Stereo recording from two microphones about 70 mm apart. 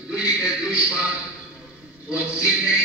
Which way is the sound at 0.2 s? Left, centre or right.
Centre.